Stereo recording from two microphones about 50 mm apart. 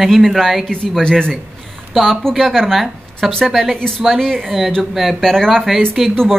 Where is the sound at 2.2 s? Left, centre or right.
Centre.